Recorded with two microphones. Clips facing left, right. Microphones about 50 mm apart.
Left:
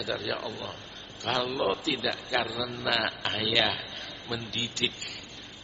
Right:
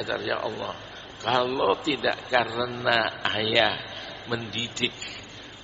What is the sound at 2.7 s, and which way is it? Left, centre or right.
Speech, centre.